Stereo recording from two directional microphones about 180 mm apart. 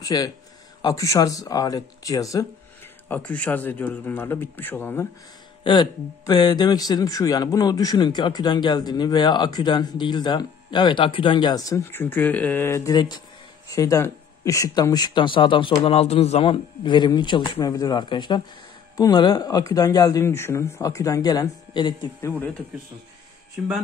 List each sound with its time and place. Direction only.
0.0 s speech: 20° left (ahead or behind)
3.1 s speech: 10° left (ahead or behind)
5.6 s speech: 25° left (ahead or behind)